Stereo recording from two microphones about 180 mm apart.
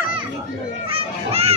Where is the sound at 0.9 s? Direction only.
35° right (ahead or behind).